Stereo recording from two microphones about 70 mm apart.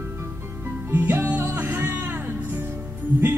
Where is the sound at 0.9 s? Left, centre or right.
Right.